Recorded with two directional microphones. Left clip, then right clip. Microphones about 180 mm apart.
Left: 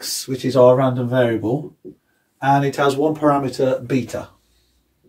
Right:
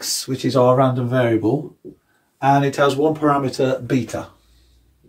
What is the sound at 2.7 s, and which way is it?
Speech, 10° left (ahead or behind).